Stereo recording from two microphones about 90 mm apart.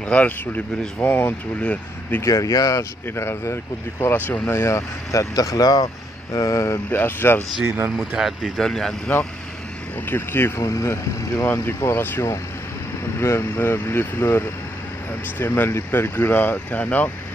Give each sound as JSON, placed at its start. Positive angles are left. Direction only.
{"t": 0.1, "sound": "speech", "side_deg": 15}
{"t": 2.2, "sound": "speech", "side_deg": 40}
{"t": 6.9, "sound": "speech", "side_deg": 20}
{"t": 7.6, "sound": "speech", "side_deg": -30}
{"t": 8.2, "sound": "speech", "side_deg": -5}
{"t": 10.0, "sound": "speech", "side_deg": 25}